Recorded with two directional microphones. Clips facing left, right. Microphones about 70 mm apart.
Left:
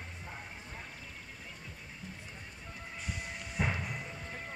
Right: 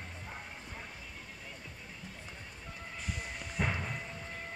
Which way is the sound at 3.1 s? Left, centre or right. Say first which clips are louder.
Right 1 dB; centre.